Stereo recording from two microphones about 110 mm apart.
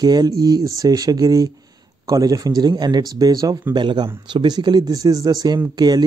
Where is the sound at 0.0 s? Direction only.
40° right (ahead or behind).